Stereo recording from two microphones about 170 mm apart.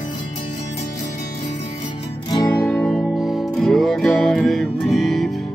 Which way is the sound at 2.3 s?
15° left (ahead or behind).